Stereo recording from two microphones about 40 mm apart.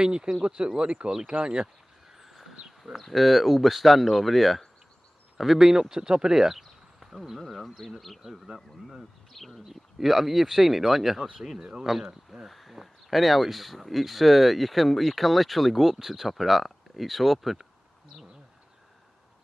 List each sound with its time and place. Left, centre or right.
0.0 s speech: right
2.1 s a sound: centre
2.8 s speech: centre
5.6 s speech: centre
6.6 s speech: centre